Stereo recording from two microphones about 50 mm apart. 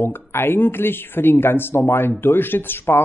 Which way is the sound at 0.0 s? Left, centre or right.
Left.